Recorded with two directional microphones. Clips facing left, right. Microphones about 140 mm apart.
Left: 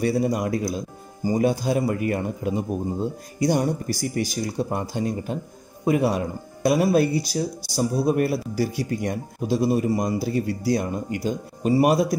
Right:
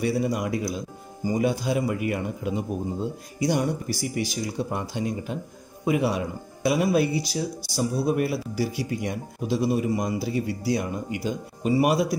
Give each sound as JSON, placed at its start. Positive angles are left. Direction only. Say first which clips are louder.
{"t": 0.0, "sound": "speech", "louder": "left 3 dB", "side_deg": 40}